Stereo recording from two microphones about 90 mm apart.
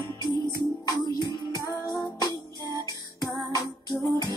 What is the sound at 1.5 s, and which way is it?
Music, 40° right (ahead or behind).